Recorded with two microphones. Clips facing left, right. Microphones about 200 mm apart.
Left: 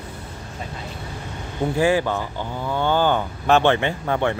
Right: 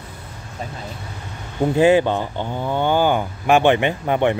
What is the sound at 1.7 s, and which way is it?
Speech, 20° right (ahead or behind).